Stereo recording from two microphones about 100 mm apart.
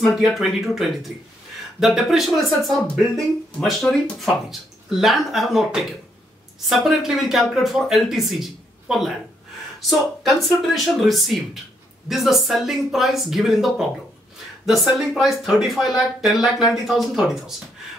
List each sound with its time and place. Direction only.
0.0 s speech: centre (ahead or behind)
3.9 s speech: 15° left (ahead or behind)
4.2 s speech: centre (ahead or behind)